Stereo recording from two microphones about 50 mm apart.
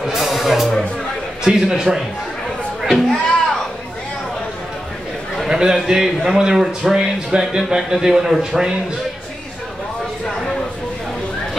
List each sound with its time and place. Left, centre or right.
0.0 s music: centre
1.4 s a man's voice: centre
2.8 s a sound: centre
5.5 s a man's voice: centre